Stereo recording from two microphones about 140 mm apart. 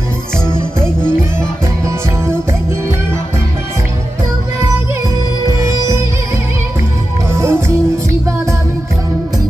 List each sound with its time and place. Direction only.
5.5 s music: 20° right (ahead or behind)
7.3 s music: 20° right (ahead or behind)